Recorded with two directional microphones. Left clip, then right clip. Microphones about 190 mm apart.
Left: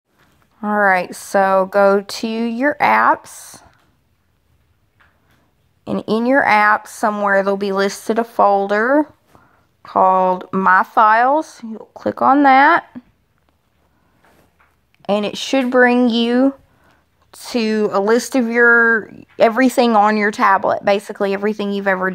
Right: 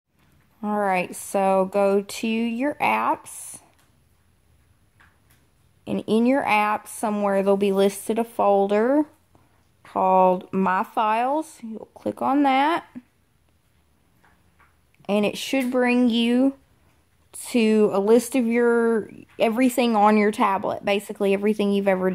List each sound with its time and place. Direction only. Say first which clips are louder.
0.6 s speech: left 8 dB; 15° left (ahead or behind)
5.9 s speech: left 4 dB; 15° left (ahead or behind)
15.0 s speech: left 5 dB; 15° left (ahead or behind)